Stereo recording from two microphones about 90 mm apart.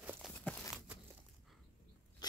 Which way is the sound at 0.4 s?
10° left (ahead or behind).